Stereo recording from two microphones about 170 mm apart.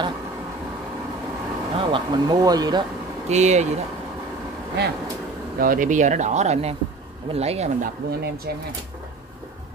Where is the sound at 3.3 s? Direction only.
40° right (ahead or behind).